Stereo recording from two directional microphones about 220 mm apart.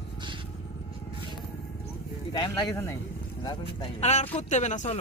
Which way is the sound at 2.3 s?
20° left (ahead or behind).